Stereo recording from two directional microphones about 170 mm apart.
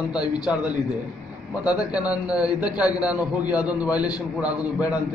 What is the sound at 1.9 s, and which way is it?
A man's voice, 5° right (ahead or behind).